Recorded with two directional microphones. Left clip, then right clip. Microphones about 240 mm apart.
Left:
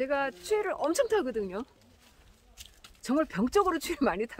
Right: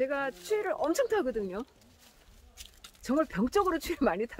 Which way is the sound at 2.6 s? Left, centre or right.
Right.